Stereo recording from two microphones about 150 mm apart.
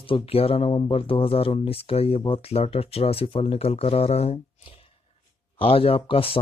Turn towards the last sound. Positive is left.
turn(degrees=40)  # may be behind; listen again after turning